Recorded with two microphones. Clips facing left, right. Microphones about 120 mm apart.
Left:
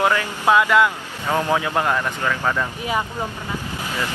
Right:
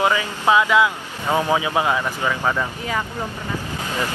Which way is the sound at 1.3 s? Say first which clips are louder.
Right 1 dB; 15° right (ahead or behind).